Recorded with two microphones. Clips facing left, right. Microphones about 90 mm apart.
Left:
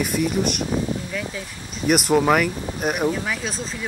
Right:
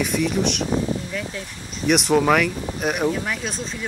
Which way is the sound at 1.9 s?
5° left (ahead or behind).